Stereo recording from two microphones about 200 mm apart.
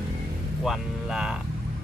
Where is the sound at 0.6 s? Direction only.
Centre (ahead or behind).